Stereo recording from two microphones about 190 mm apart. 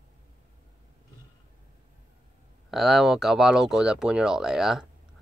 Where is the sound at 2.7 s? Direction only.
Centre (ahead or behind).